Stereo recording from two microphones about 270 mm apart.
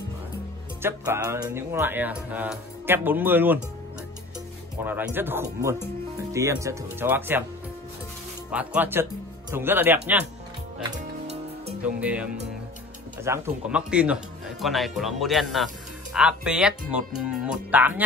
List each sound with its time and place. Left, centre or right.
0.8 s speech: centre
4.8 s speech: centre
8.5 s speech: centre
10.8 s music: right
12.0 s speech: centre